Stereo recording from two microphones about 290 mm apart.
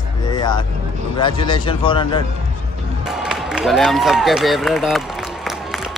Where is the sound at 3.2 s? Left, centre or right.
Centre.